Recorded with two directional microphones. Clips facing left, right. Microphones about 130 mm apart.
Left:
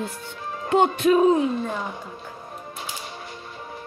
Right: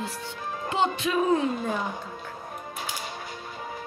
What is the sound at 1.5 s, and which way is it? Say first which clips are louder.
Speech: left 1 dB; 5° right (ahead or behind).